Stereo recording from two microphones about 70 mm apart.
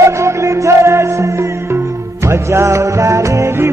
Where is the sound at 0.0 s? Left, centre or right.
Right.